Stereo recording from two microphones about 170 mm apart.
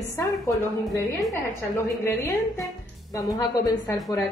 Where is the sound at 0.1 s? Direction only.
20° left (ahead or behind).